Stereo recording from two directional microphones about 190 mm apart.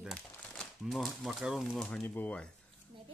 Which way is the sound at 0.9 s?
Centre (ahead or behind).